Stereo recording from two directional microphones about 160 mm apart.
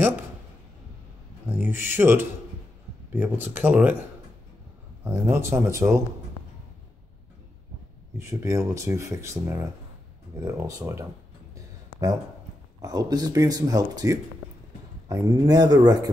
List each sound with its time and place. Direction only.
1.5 s speech: 15° right (ahead or behind)
5.0 s speech: 15° right (ahead or behind)
8.2 s speech: 15° right (ahead or behind)
11.5 s a sound: 25° right (ahead or behind)
12.8 s speech: 25° right (ahead or behind)